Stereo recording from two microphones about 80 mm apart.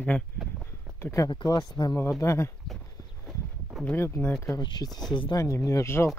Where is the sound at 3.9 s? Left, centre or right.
Left.